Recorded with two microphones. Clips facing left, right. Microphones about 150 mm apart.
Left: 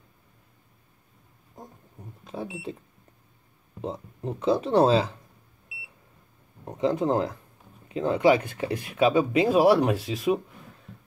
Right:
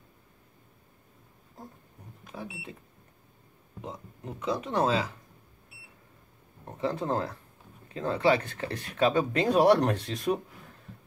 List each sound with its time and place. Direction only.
2.0 s a sound: 20° left (ahead or behind)
2.3 s speech: 25° left (ahead or behind)
3.8 s speech: 30° left (ahead or behind)
6.6 s speech: 15° left (ahead or behind)